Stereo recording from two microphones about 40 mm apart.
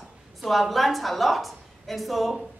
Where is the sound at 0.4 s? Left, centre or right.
Centre.